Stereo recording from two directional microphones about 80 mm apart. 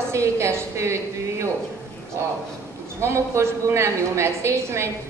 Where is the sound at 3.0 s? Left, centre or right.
Right.